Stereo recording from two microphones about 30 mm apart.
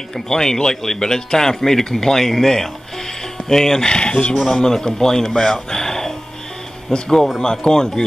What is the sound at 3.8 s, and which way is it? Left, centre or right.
Speech, left.